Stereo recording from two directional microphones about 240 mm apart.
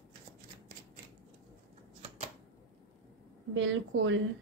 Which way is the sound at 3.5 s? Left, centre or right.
Right.